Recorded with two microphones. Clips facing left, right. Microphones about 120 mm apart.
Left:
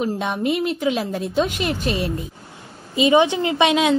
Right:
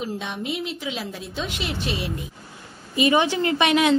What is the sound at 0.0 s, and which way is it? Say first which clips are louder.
A woman's voice: left 7 dB; 55° left (ahead or behind).